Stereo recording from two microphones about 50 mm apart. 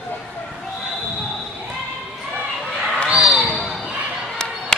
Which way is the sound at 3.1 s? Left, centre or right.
Centre.